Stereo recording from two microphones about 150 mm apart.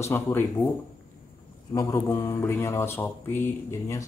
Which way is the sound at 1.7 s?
25° left (ahead or behind).